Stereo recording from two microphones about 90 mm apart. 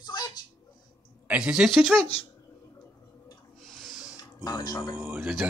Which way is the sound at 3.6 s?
5° left (ahead or behind).